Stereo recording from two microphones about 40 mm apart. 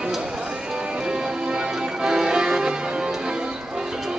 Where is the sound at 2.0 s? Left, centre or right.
Centre.